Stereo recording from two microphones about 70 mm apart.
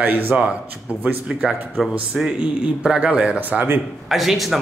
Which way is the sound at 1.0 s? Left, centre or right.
Centre.